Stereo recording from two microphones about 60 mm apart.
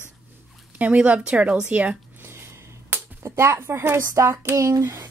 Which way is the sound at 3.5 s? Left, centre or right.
Right.